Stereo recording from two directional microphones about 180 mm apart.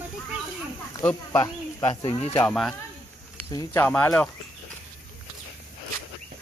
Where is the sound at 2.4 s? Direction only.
5° left (ahead or behind).